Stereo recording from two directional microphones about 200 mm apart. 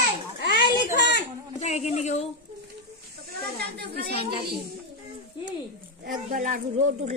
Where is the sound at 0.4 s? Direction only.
60° left (ahead or behind).